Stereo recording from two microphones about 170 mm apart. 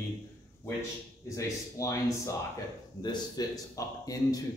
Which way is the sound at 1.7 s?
15° left (ahead or behind).